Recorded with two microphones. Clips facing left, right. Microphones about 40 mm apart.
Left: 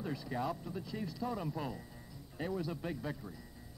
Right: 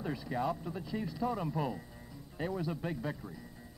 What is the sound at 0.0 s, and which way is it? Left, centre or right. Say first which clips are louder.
A man's voice: right 3 dB; centre.